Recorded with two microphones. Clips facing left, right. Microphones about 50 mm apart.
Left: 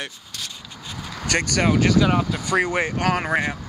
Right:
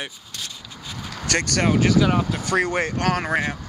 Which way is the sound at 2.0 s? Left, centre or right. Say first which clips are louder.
Even; centre.